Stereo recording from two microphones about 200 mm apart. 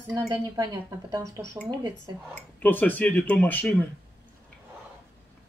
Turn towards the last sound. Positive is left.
turn(degrees=10)  # may be behind; listen again after turning